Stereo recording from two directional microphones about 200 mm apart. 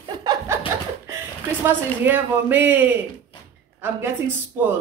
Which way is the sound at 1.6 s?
10° right (ahead or behind).